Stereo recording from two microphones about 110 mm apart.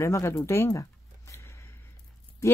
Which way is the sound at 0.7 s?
30° left (ahead or behind).